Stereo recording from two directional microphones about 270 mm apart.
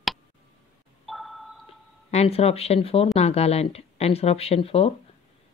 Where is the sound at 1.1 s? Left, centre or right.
Centre.